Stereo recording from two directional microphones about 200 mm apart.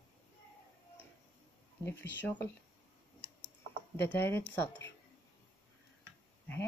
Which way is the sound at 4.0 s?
10° left (ahead or behind).